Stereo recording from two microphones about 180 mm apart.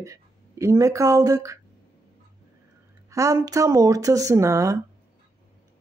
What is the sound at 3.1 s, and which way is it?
Speech, 15° right (ahead or behind).